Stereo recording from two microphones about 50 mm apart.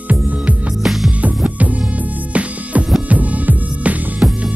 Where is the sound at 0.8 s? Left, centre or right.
Centre.